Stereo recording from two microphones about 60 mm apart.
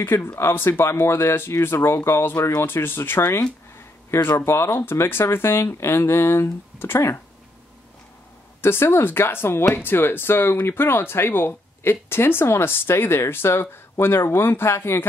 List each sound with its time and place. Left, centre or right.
0.0 s speech: left
8.5 s speech: left